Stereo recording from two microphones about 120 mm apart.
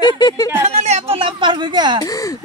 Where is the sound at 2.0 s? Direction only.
30° left (ahead or behind).